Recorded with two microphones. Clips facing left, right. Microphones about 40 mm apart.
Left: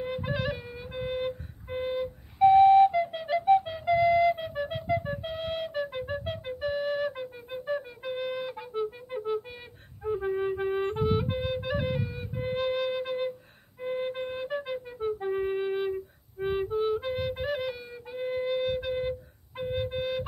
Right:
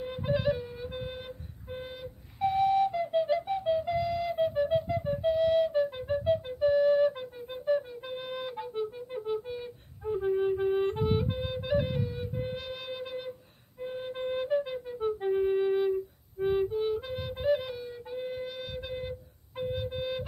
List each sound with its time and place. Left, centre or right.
0.2 s music: centre
1.0 s flute: left
3.8 s flute: left
4.5 s flute: left
7.1 s flute: centre
8.5 s music: centre
9.5 s music: centre
12.4 s flute: left
15.3 s music: centre
18.3 s flute: left